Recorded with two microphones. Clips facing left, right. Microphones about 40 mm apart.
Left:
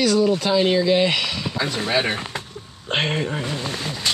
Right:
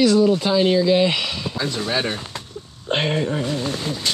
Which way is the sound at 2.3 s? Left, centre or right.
Left.